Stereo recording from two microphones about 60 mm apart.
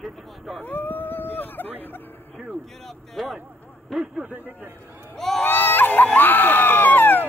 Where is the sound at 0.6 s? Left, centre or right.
Left.